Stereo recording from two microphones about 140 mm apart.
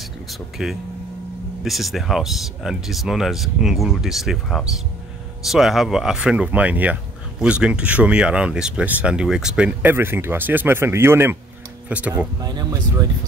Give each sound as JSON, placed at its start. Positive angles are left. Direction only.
{"t": 0.3, "sound": "speech", "side_deg": 0}
{"t": 12.4, "sound": "speech", "side_deg": -30}